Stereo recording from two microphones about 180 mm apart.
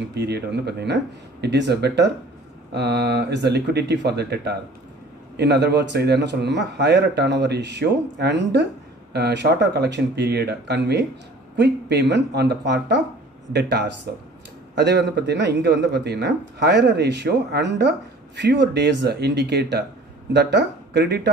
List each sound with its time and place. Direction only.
0.1 s a man's voice: 70° right (ahead or behind)